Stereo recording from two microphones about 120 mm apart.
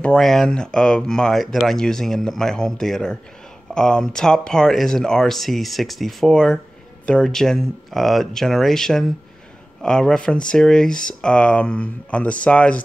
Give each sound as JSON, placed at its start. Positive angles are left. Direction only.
{"t": 0.0, "sound": "speech", "side_deg": 5}